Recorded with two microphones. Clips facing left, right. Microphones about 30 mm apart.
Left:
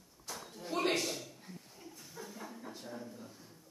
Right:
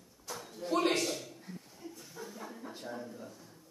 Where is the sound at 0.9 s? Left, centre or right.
Centre.